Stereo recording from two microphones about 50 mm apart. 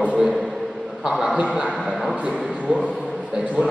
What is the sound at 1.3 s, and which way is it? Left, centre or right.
Speech, right.